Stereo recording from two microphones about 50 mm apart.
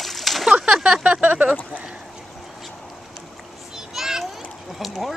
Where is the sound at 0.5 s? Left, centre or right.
Centre.